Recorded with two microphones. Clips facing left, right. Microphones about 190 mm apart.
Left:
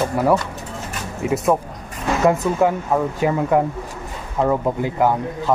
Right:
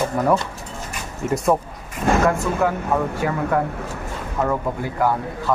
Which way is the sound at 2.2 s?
20° left (ahead or behind).